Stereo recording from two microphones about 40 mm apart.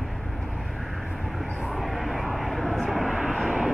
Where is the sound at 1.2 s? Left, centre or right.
Centre.